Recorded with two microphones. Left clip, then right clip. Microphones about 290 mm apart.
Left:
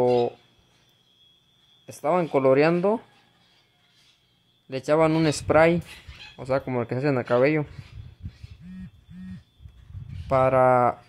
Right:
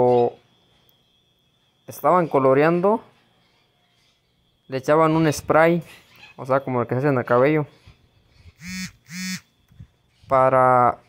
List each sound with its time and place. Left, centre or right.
0.0 s a sound: centre
1.9 s speech: centre
4.6 s speech: centre
10.2 s speech: centre